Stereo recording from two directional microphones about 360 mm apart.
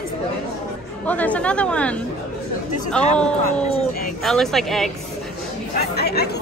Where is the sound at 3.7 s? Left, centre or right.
Left.